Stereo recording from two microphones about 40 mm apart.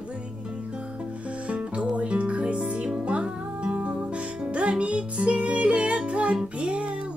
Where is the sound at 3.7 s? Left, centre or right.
Right.